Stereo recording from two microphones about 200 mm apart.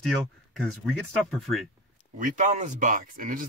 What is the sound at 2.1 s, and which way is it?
Speech, 40° right (ahead or behind).